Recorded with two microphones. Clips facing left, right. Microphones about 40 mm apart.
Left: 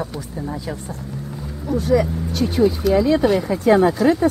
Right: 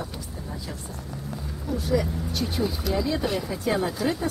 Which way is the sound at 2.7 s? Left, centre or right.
Centre.